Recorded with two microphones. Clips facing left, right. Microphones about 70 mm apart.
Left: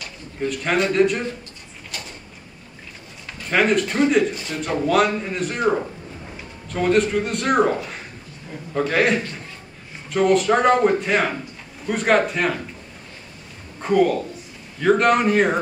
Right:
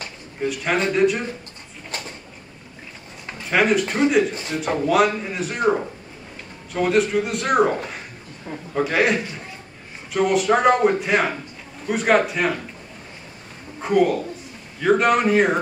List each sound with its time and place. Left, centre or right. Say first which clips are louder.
0.4 s speech: left 1 dB; centre
3.4 s speech: even; centre
4.3 s a man's voice: right 1 dB; right
4.7 s a man's voice: even; centre
13.7 s a man's voice: even; centre